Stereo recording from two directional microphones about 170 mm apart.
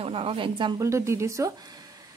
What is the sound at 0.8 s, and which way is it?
A woman's voice, 15° right (ahead or behind).